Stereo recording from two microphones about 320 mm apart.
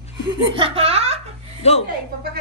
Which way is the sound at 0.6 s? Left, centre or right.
Centre.